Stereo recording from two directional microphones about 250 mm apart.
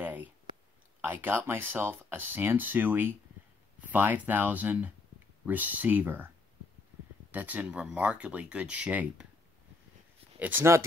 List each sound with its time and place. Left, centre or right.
0.0 s a sound: centre
1.0 s speech: centre
10.4 s speech: centre